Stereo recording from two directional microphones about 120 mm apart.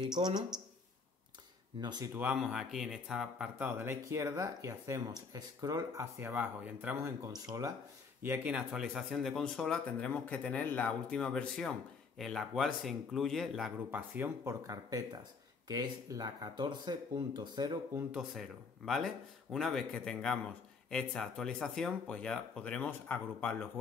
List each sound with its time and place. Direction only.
0.0 s speech: 35° right (ahead or behind)
1.8 s speech: 35° right (ahead or behind)
2.1 s speech: 10° right (ahead or behind)
7.3 s speech: 30° right (ahead or behind)
8.2 s speech: 15° right (ahead or behind)
13.8 s speech: 15° right (ahead or behind); by 17.7 s 40° right (ahead or behind)
18.1 s speech: centre (ahead or behind); by 23.7 s 15° left (ahead or behind)